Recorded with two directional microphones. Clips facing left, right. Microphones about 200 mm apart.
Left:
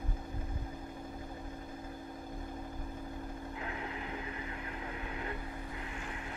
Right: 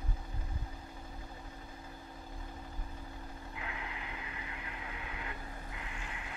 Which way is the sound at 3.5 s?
40° left (ahead or behind).